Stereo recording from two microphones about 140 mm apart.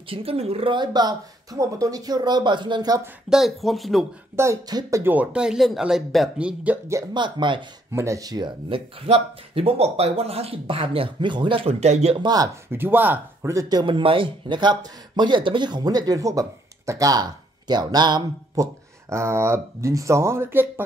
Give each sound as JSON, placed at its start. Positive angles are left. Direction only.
{"t": 0.1, "sound": "speech", "side_deg": -45}
{"t": 3.3, "sound": "speech", "side_deg": 0}
{"t": 4.4, "sound": "speech", "side_deg": -25}
{"t": 5.0, "sound": "speech", "side_deg": -10}
{"t": 7.2, "sound": "speech", "side_deg": -35}
{"t": 7.9, "sound": "speech", "side_deg": -20}
{"t": 12.2, "sound": "speech", "side_deg": -30}
{"t": 12.7, "sound": "speech", "side_deg": -15}